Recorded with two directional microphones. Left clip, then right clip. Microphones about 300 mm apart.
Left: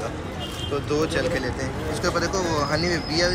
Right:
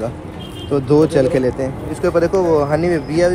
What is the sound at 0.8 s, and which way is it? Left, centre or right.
Speech, centre.